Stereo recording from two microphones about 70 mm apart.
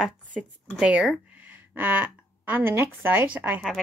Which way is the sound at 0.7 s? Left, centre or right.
Centre.